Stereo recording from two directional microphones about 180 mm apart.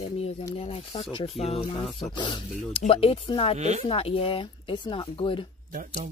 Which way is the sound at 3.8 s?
30° left (ahead or behind).